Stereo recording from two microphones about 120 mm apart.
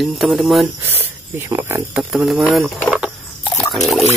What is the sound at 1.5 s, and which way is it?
Speech, 20° right (ahead or behind).